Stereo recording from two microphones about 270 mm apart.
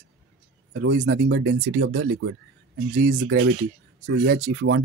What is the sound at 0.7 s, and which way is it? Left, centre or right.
Speech, right.